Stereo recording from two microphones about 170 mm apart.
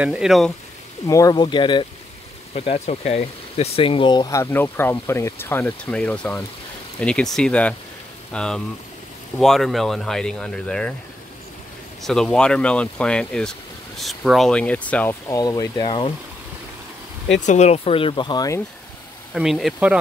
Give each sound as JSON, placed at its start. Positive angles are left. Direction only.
{"t": 0.0, "sound": "speech", "side_deg": -5}
{"t": 1.0, "sound": "speech", "side_deg": 20}
{"t": 12.0, "sound": "speech", "side_deg": 5}
{"t": 15.2, "sound": "speech", "side_deg": 20}
{"t": 17.4, "sound": "speech", "side_deg": 45}
{"t": 19.3, "sound": "speech", "side_deg": 0}